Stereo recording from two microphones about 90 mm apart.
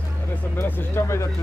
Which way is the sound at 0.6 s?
25° left (ahead or behind).